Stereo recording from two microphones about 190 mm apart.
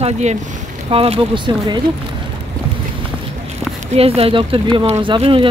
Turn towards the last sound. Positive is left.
turn(degrees=-25)  # may be behind; listen again after turning